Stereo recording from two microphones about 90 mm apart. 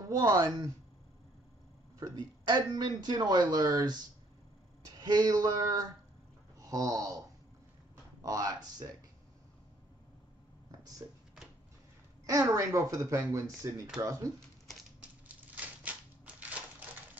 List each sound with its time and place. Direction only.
0.1 s speech: 45° right (ahead or behind)
2.0 s speech: 45° right (ahead or behind)
11.0 s speech: 40° right (ahead or behind)
12.3 s speech: 35° right (ahead or behind)
15.0 s a sound: 15° right (ahead or behind)